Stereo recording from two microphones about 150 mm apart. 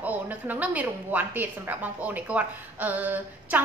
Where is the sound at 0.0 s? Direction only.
10° right (ahead or behind).